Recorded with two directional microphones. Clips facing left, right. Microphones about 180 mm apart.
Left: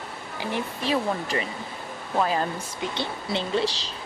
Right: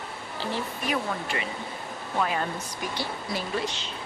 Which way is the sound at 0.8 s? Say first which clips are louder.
Left 4 dB; 30° left (ahead or behind).